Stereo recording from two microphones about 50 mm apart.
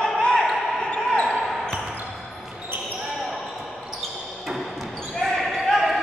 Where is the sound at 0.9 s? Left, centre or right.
Centre.